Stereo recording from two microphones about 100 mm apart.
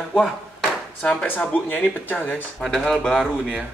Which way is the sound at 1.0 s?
15° left (ahead or behind).